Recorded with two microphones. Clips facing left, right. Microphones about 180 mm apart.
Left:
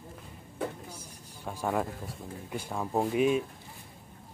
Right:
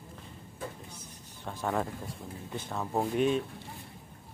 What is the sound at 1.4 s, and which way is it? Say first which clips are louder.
Speech: left 1 dB; 10° left (ahead or behind).